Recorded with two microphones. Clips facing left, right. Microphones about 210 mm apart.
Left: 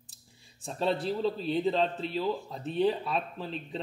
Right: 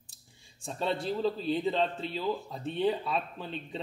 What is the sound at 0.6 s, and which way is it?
A man's voice, centre (ahead or behind).